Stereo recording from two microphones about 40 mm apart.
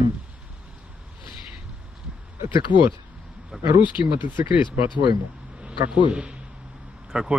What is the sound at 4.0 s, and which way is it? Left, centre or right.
Speech, right.